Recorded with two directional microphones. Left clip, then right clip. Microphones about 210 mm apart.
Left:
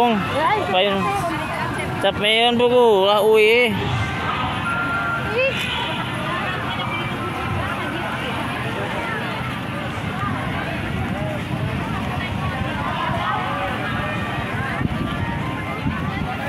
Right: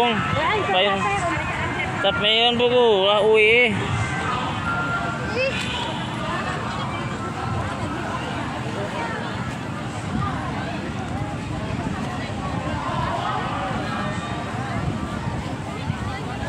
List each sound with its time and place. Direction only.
0.0 s speech: 35° left (ahead or behind)
2.0 s speech: 30° left (ahead or behind)